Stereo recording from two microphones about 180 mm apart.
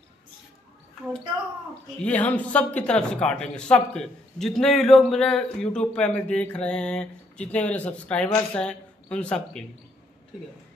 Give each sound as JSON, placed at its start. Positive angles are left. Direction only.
{"t": 2.0, "sound": "speech", "side_deg": 10}